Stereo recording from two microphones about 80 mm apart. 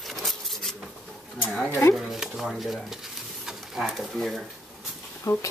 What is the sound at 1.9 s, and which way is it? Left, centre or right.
Pigeon, centre.